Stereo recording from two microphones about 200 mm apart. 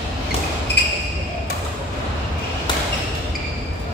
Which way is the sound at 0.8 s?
55° left (ahead or behind).